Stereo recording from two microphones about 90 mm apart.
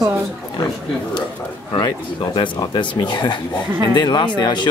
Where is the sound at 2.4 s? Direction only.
55° left (ahead or behind).